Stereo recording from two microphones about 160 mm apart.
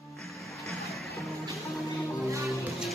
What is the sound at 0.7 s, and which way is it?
Music, centre (ahead or behind).